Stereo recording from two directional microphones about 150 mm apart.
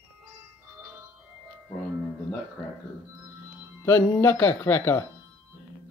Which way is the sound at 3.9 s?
15° left (ahead or behind).